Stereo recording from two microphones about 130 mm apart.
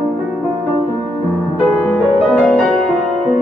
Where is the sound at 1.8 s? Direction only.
10° left (ahead or behind).